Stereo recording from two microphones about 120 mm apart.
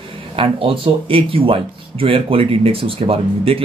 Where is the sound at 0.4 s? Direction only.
50° right (ahead or behind).